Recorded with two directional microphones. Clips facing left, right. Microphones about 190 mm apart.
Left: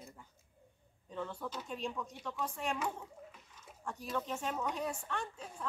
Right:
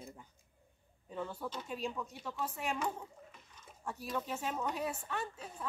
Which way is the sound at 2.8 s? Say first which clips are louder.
Right 1 dB; 5° right (ahead or behind).